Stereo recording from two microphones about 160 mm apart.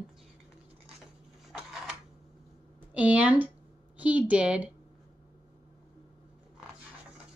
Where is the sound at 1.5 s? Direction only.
Centre (ahead or behind).